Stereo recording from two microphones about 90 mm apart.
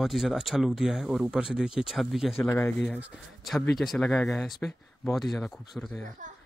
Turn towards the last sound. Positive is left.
turn(degrees=0)  # may be behind; listen again after turning